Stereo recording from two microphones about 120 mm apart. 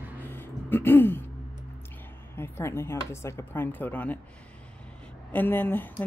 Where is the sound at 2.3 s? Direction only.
20° left (ahead or behind).